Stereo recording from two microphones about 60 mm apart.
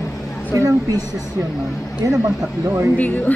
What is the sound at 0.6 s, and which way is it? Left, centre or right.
Speech, right.